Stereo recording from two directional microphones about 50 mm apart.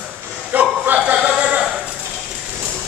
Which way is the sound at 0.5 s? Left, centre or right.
Right.